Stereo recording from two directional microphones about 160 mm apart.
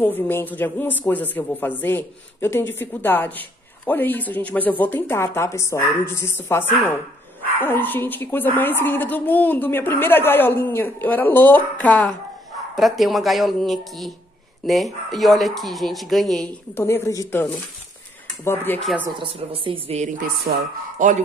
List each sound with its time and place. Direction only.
0.0 s speech: 15° left (ahead or behind)
16.7 s speech: 15° left (ahead or behind)
19.0 s speech: 30° right (ahead or behind)
21.0 s a man's voice: 55° right (ahead or behind)